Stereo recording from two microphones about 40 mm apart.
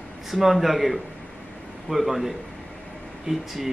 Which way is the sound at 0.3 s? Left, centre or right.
Centre.